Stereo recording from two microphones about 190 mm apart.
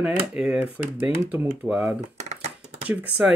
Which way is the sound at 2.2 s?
35° right (ahead or behind).